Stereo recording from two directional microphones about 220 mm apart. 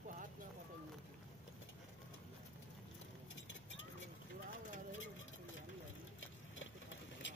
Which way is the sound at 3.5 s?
60° left (ahead or behind).